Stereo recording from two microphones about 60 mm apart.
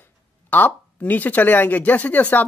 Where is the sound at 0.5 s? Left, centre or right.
Left.